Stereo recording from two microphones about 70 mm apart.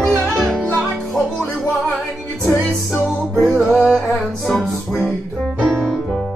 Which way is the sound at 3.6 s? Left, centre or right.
Centre.